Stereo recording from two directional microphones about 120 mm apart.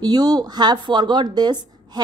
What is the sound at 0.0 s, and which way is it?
Speech, 35° right (ahead or behind).